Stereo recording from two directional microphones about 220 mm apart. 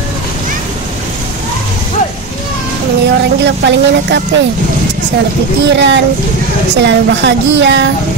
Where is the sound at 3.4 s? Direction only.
50° right (ahead or behind).